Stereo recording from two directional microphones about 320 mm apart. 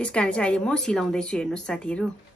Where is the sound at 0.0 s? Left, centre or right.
Centre.